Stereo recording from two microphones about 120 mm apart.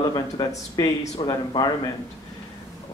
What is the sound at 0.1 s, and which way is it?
Speech, 30° left (ahead or behind).